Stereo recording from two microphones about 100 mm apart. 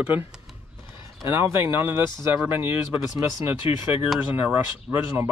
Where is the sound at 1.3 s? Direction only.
25° right (ahead or behind).